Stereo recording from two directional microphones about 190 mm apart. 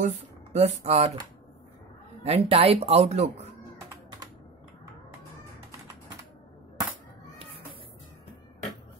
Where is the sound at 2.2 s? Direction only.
30° right (ahead or behind).